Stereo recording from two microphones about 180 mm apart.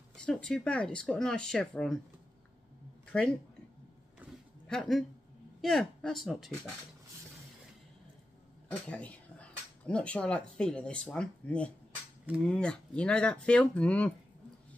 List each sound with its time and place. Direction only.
0.1 s speech: 5° left (ahead or behind)
3.1 s speech: 5° left (ahead or behind)
4.2 s a sound: 10° right (ahead or behind)
4.6 s speech: centre (ahead or behind)
8.6 s speech: 10° left (ahead or behind)